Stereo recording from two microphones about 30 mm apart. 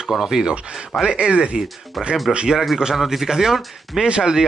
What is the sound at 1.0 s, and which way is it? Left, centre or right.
Speech, right.